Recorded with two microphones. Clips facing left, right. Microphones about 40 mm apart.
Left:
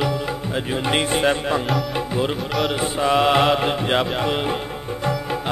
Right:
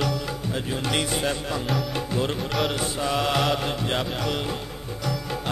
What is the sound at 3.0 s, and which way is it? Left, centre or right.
Music, left.